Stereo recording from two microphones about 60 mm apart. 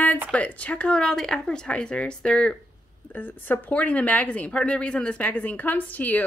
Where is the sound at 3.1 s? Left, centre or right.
Left.